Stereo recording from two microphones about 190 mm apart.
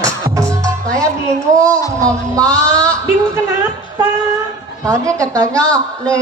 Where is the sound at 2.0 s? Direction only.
15° right (ahead or behind).